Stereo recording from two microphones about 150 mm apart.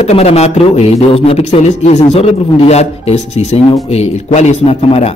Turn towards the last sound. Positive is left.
turn(degrees=45)  # may be behind; listen again after turning